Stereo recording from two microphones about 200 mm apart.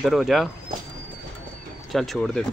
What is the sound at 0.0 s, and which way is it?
Speech, centre (ahead or behind).